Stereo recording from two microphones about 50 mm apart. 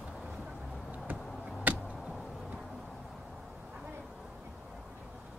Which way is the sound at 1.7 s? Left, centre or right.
Right.